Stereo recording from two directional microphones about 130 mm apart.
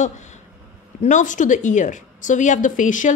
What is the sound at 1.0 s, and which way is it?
A woman's voice, 75° left (ahead or behind).